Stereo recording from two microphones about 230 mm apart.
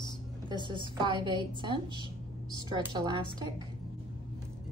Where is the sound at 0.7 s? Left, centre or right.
Right.